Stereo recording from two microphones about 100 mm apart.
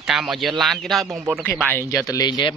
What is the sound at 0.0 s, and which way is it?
Speech, 5° right (ahead or behind).